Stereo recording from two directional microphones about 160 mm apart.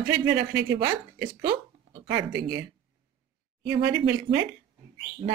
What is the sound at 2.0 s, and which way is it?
Speech, 90° right.